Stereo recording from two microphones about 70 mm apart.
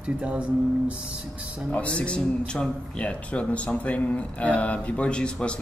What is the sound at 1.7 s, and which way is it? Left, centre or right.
Speech, centre.